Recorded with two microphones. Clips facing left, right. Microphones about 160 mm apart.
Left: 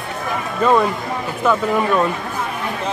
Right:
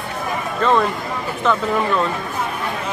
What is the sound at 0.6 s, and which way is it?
Speech, 10° left (ahead or behind).